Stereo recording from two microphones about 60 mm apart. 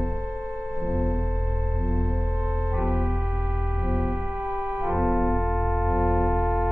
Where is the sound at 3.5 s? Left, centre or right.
Right.